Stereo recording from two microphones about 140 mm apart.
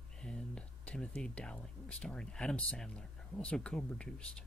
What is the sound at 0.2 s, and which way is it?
Speech, 5° left (ahead or behind).